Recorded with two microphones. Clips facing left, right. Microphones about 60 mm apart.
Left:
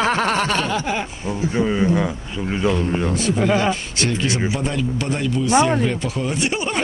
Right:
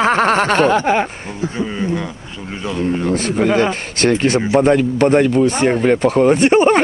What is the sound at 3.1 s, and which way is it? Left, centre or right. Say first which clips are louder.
Speech: right 3 dB; right.